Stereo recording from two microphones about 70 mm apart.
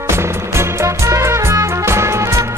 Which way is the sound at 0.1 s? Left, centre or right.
Right.